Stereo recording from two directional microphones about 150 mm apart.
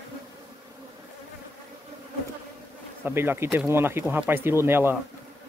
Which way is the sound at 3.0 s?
15° right (ahead or behind).